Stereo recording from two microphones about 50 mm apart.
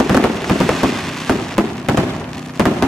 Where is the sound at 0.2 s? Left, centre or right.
Centre.